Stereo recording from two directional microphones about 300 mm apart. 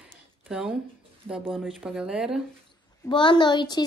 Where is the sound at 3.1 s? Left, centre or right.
Centre.